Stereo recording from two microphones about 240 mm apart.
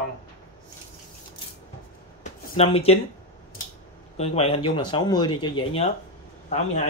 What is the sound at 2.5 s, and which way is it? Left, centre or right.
Speech, left.